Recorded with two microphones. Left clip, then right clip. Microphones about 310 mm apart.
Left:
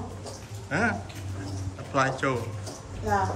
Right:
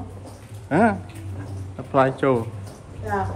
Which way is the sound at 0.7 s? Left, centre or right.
Centre.